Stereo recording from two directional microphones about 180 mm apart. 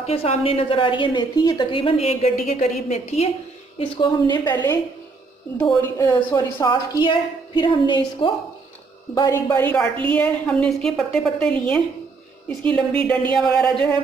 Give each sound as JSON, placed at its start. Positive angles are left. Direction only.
{"t": 0.0, "sound": "a woman's voice", "side_deg": 35}
{"t": 5.6, "sound": "a woman's voice", "side_deg": 5}
{"t": 5.9, "sound": "a woman's voice", "side_deg": 15}